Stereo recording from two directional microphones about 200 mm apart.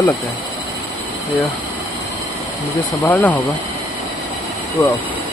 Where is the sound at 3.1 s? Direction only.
10° left (ahead or behind).